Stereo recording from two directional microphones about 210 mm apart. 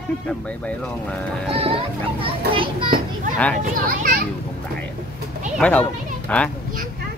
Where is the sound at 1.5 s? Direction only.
25° right (ahead or behind).